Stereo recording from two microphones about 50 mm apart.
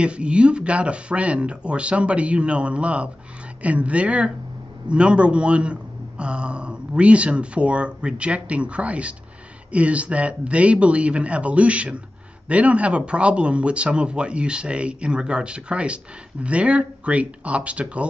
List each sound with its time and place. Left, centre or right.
0.0 s speech: right